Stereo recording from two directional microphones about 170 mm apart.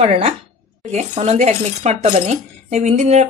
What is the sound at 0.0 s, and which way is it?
Speech, 35° right (ahead or behind).